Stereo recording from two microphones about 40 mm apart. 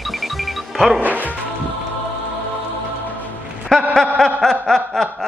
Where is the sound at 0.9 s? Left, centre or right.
Right.